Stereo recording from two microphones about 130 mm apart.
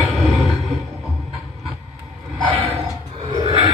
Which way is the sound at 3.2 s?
35° right (ahead or behind).